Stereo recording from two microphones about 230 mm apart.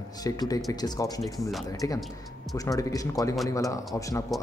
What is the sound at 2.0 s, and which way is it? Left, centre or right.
Speech, centre.